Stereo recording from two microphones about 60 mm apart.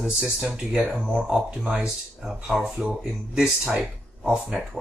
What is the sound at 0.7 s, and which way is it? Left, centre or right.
Speech, right.